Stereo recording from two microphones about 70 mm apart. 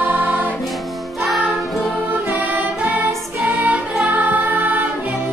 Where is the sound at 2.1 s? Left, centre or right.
Right.